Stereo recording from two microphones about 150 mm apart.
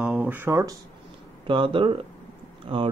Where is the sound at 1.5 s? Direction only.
35° right (ahead or behind).